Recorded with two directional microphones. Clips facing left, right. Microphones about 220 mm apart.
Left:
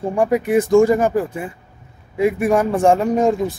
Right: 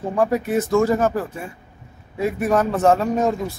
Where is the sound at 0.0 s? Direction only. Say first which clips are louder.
Left 3 dB; 15° left (ahead or behind).